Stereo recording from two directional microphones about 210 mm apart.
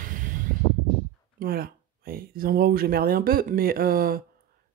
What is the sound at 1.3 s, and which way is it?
Speech, 45° right (ahead or behind).